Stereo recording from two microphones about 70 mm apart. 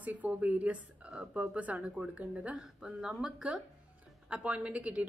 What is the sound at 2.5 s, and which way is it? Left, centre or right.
A woman's voice, centre.